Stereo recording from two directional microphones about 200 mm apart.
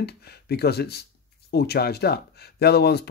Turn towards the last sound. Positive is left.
turn(degrees=55)  # may be behind; listen again after turning